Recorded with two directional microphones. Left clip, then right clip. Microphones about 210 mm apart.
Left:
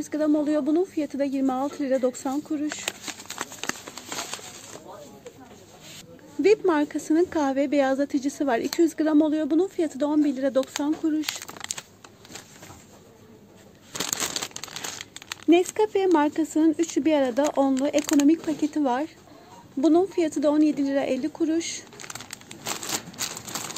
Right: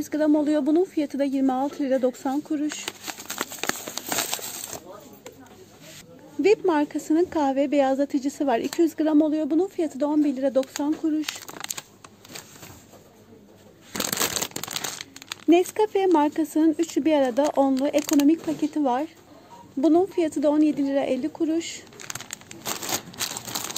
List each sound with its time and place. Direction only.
0.0 s speech: 15° right (ahead or behind)
3.3 s a sound: 35° right (ahead or behind)
6.4 s a woman's voice: 5° right (ahead or behind)
15.1 s a woman's voice: centre (ahead or behind)
23.1 s crumpling: 25° right (ahead or behind)